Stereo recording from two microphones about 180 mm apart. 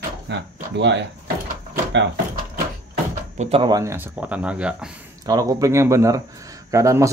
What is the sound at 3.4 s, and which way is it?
Speech, 30° right (ahead or behind).